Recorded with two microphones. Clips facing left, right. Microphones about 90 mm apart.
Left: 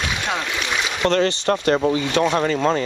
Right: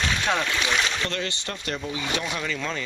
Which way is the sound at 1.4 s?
65° left (ahead or behind).